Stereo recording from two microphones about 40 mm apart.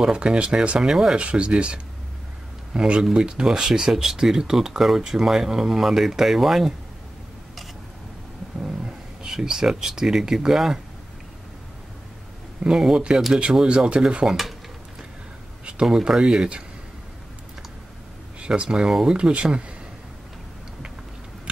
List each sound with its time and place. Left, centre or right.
0.0 s speech: right
0.7 s speech: centre
1.1 s speech: right
3.0 s speech: centre
8.5 s speech: centre
12.6 s speech: centre
13.4 s speech: right
14.2 s speech: centre
15.6 s speech: right
18.6 s speech: right